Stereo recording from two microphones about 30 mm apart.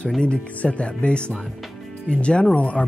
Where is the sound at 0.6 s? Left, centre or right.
Left.